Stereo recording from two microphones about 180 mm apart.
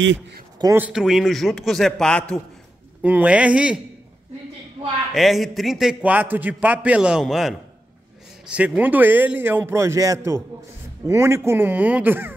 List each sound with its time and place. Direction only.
0.6 s speech: 20° right (ahead or behind)
0.8 s a man's voice: 5° right (ahead or behind)
3.0 s a man's voice: 10° right (ahead or behind)
5.1 s a man's voice: centre (ahead or behind)